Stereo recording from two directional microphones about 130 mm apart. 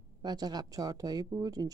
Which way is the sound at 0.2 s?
30° right (ahead or behind).